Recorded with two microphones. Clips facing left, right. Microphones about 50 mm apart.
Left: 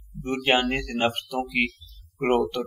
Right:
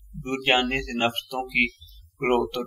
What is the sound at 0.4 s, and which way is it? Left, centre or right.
Speech, centre.